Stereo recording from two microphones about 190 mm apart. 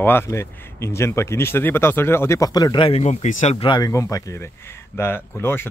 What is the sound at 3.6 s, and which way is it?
Speech, 20° left (ahead or behind).